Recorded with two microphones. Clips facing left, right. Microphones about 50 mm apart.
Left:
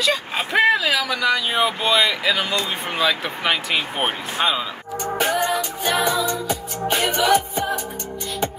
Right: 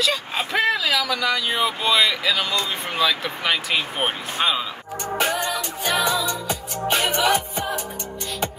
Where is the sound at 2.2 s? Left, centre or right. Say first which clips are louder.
Left 1 dB; centre.